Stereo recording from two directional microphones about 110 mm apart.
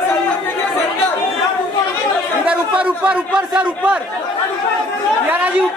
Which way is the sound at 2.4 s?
10° right (ahead or behind).